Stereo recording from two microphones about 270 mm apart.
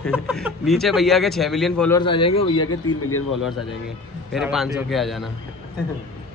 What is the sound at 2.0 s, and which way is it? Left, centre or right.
Speech, centre.